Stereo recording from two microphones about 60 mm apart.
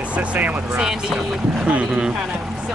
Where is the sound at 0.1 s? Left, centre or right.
Right.